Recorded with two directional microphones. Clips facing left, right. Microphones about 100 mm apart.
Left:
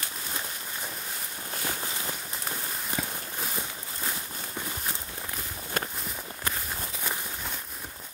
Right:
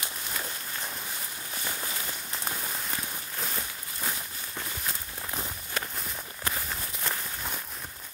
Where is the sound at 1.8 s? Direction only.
20° left (ahead or behind).